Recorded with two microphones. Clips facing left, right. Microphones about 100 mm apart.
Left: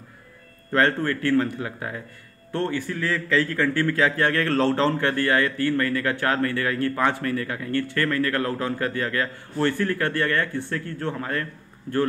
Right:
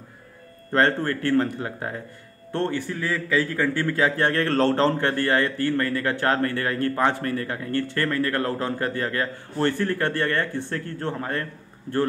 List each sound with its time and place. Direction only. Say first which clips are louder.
0.7 s a man's voice: even; 30° right (ahead or behind)
3.1 s a man's voice: left 1 dB; 15° right (ahead or behind); by 11.4 s 30° right (ahead or behind)